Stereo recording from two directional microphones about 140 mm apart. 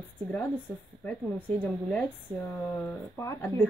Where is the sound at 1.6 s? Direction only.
10° left (ahead or behind).